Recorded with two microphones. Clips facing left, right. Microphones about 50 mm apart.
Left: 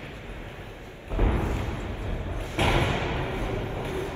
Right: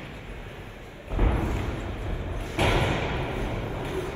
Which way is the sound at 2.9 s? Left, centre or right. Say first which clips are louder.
Even; left.